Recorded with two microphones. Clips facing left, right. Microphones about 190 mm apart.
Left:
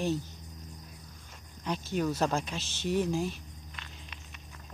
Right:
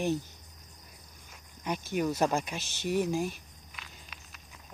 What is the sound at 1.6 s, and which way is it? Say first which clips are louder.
Speech: even; 15° right (ahead or behind).